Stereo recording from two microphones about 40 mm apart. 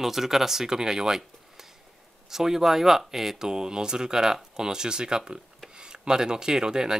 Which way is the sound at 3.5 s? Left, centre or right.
Centre.